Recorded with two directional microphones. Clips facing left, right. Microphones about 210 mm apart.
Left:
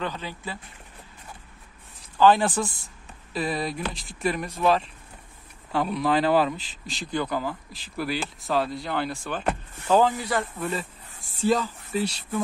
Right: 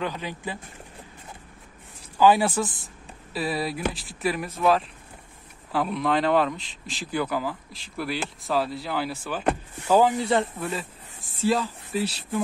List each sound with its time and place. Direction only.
0.0 s a man's voice: 10° right (ahead or behind)
2.1 s a man's voice: 10° right (ahead or behind)
10.1 s speech: 25° right (ahead or behind)
10.6 s speech: centre (ahead or behind)